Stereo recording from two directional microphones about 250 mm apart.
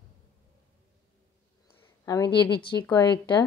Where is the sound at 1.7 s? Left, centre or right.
Centre.